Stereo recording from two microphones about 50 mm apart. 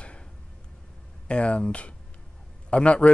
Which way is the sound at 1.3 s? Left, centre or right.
Left.